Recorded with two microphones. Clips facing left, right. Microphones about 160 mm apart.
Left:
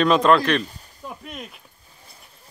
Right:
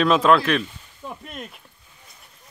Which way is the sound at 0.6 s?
40° left (ahead or behind).